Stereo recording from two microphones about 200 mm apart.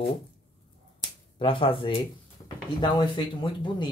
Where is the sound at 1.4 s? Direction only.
25° left (ahead or behind).